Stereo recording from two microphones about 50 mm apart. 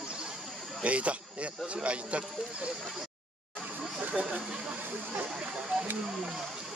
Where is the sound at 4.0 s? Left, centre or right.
Centre.